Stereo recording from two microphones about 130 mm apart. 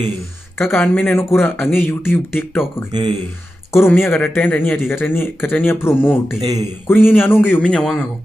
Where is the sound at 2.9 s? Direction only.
35° right (ahead or behind).